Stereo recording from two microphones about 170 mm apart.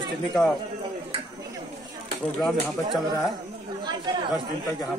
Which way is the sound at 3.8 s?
25° right (ahead or behind).